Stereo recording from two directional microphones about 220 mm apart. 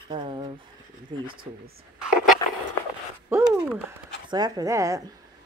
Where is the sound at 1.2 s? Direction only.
40° right (ahead or behind).